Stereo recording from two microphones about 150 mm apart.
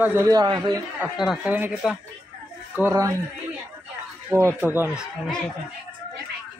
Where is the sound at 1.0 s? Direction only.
5° right (ahead or behind).